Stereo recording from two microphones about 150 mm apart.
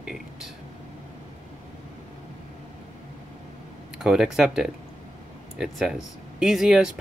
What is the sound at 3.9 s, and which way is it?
Speech, 5° right (ahead or behind).